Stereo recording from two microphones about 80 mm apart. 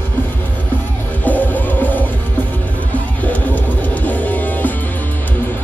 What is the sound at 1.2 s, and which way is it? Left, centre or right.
Music, left.